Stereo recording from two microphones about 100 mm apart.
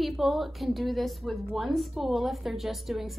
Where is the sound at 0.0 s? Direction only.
Centre (ahead or behind).